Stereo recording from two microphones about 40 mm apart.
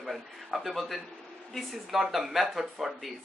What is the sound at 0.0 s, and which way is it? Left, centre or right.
Speech, centre.